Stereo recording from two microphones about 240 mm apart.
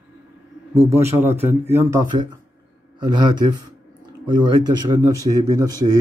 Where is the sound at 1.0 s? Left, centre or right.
Centre.